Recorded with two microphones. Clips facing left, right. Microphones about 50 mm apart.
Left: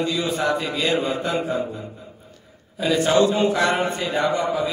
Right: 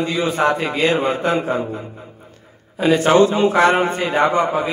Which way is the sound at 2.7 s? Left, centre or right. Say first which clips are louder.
Right 5 dB; right.